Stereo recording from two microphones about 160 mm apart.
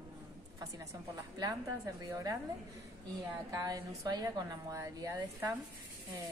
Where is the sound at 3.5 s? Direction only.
25° right (ahead or behind).